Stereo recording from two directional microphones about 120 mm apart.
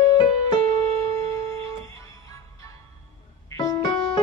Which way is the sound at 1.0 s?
25° left (ahead or behind).